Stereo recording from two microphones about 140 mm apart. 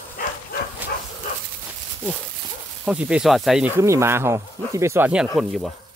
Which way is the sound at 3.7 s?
20° right (ahead or behind).